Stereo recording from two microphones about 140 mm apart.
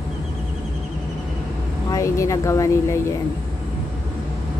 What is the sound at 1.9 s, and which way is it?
Speech, 20° left (ahead or behind).